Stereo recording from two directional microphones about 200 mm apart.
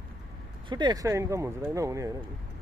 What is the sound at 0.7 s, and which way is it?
Speech, 20° right (ahead or behind).